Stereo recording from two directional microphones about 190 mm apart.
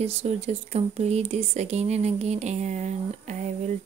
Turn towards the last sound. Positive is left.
turn(degrees=-35)  # may be behind; listen again after turning